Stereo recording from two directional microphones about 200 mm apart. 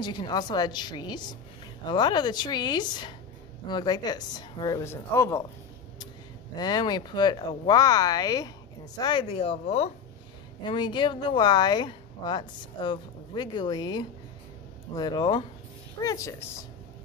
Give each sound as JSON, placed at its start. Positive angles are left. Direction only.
{"t": 0.0, "sound": "speech", "side_deg": 20}
{"t": 6.5, "sound": "a woman's voice", "side_deg": 20}